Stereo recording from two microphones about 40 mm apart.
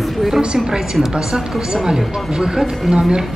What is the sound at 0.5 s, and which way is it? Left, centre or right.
Speech, centre.